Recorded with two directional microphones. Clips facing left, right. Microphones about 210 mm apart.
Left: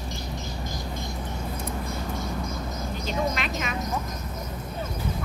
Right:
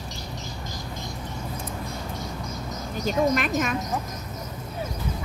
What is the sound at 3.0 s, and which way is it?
Speech, 50° right (ahead or behind).